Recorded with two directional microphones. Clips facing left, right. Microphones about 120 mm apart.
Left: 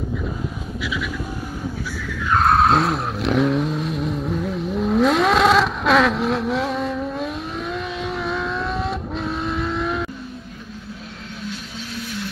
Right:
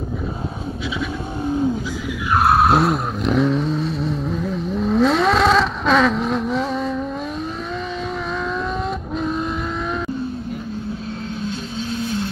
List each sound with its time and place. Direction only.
2.3 s vehicle: 5° right (ahead or behind)
8.3 s vehicle: centre (ahead or behind)
11.4 s vehicle: 25° right (ahead or behind)